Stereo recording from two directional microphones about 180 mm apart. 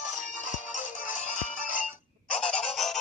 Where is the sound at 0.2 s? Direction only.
45° left (ahead or behind).